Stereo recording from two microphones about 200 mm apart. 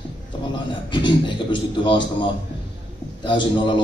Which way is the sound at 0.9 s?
25° left (ahead or behind).